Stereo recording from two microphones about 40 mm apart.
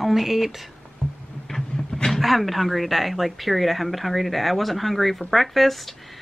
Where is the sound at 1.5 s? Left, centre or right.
Centre.